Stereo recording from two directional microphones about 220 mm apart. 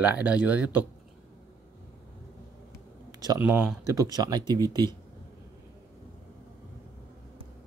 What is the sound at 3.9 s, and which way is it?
Speech, 15° right (ahead or behind).